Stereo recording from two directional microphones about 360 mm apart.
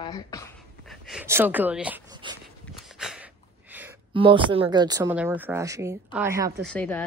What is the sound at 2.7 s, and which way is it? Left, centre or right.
Speech, centre.